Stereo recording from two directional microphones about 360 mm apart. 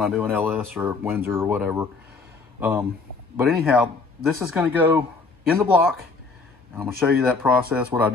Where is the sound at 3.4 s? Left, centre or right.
Centre.